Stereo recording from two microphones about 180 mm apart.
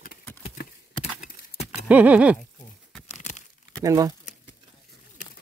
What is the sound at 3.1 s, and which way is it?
Crumpling, 40° left (ahead or behind).